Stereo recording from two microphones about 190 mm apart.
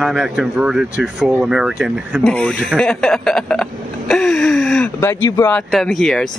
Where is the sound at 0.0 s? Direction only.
Centre (ahead or behind).